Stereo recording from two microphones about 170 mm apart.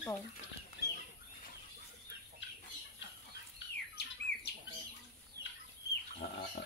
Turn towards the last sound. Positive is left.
turn(degrees=60)  # may be behind; listen again after turning